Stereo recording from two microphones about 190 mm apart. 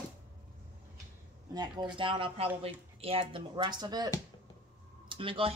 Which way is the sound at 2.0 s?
25° right (ahead or behind).